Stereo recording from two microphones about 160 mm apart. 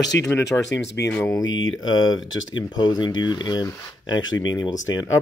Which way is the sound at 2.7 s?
25° left (ahead or behind).